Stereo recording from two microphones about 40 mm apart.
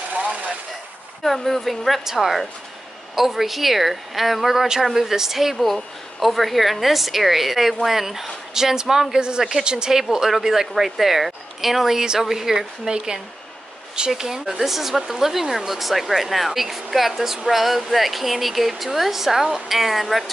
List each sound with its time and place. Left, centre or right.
0.1 s a sound: right
1.2 s a woman's voice: centre
5.6 s a woman's voice: centre